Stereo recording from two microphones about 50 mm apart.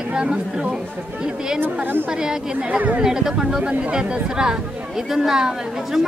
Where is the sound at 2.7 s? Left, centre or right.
Right.